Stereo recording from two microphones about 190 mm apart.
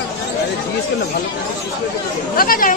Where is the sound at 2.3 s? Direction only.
50° left (ahead or behind).